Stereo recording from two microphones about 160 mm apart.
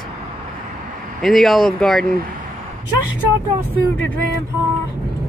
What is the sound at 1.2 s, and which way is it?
Speech, centre (ahead or behind).